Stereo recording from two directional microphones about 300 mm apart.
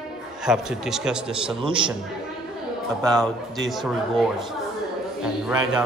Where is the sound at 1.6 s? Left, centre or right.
Centre.